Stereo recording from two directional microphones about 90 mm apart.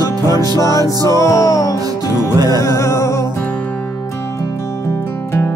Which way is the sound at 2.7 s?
30° left (ahead or behind).